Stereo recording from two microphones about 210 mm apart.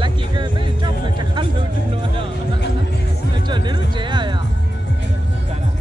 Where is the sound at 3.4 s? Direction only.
20° right (ahead or behind).